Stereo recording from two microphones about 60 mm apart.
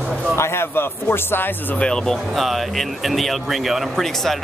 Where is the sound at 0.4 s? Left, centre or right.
Left.